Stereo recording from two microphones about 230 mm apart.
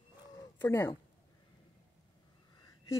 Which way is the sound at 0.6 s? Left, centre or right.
Centre.